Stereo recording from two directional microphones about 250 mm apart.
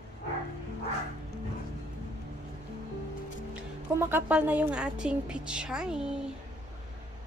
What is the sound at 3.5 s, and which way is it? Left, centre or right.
A woman's voice, centre.